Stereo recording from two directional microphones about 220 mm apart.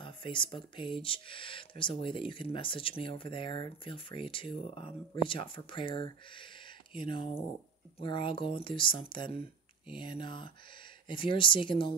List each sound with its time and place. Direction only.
0.0 s speech: 20° left (ahead or behind)